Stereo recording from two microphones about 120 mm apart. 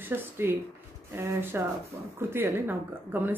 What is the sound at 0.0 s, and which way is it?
Speech, 15° right (ahead or behind).